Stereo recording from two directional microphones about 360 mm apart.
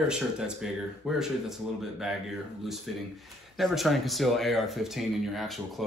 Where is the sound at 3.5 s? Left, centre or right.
Centre.